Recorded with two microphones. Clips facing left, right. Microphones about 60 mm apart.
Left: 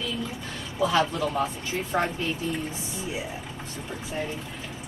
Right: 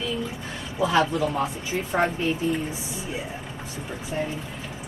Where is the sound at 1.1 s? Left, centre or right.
Centre.